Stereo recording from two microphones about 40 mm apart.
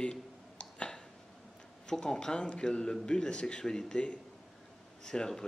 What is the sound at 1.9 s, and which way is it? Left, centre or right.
A man's voice, centre.